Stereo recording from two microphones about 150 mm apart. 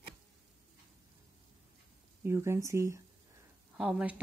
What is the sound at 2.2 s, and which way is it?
Speech, 15° right (ahead or behind).